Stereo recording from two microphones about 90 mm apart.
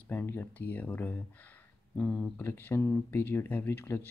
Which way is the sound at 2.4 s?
25° left (ahead or behind).